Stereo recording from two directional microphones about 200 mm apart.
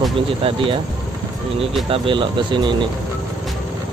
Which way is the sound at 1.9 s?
25° right (ahead or behind).